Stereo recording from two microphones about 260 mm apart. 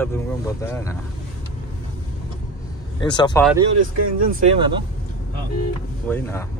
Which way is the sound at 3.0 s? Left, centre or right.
Centre.